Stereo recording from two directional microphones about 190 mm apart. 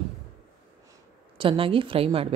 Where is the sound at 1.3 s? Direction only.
30° right (ahead or behind).